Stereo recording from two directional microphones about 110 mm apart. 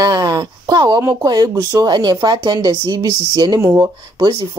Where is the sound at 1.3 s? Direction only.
40° right (ahead or behind).